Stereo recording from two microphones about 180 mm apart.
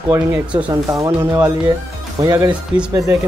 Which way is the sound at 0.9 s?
20° right (ahead or behind).